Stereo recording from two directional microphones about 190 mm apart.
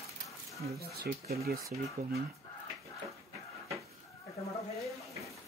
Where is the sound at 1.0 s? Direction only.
55° right (ahead or behind).